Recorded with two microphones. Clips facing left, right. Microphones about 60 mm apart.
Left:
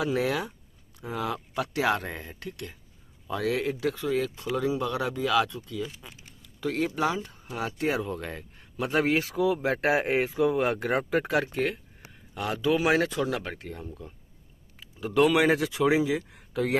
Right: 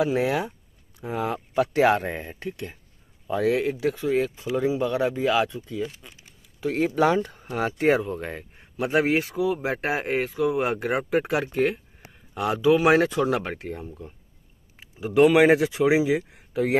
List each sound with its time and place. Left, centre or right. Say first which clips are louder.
0.0 s speech: right 4 dB; right
5.9 s speech: right 1 dB; centre
6.4 s speech: right 4 dB; right
7.2 s speech: right 6 dB; right
8.0 s speech: right 3 dB; centre
8.7 s speech: right 3 dB; centre
13.2 s speech: right 5 dB; right
13.8 s speech: right 2 dB; centre
14.8 s speech: right 5 dB; right